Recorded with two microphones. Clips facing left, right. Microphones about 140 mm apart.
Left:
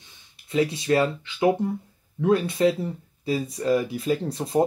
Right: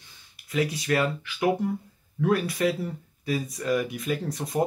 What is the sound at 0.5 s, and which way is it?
Speech, 25° left (ahead or behind).